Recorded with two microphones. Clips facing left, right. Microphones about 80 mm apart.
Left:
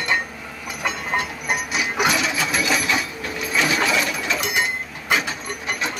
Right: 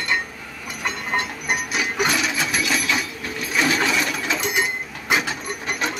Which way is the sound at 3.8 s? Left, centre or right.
Centre.